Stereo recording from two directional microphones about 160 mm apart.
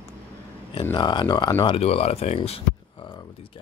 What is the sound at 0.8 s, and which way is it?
Speech, 25° left (ahead or behind).